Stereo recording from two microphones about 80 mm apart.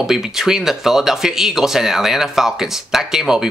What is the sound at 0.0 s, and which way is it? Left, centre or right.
Speech, centre.